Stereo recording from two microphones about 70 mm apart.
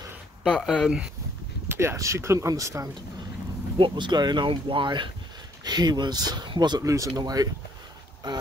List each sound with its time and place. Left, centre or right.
0.5 s speech: centre
0.8 s speech: centre
1.7 s a sound: right
2.0 s speech: right
3.9 s speech: right
6.8 s speech: right
7.2 s speech: right
8.2 s speech: right